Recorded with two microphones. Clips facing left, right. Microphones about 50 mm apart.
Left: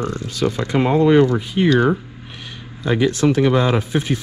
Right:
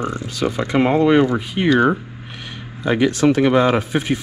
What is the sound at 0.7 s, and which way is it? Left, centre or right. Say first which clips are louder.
Speech: even; right.